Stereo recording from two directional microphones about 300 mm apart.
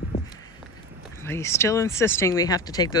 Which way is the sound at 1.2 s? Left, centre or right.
Centre.